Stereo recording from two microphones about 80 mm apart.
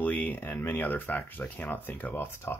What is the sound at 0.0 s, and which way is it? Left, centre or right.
Speech, centre.